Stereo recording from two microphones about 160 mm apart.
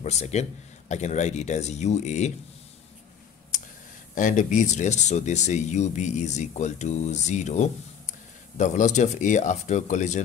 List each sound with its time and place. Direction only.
0.0 s speech: 45° left (ahead or behind)
4.1 s speech: 50° left (ahead or behind)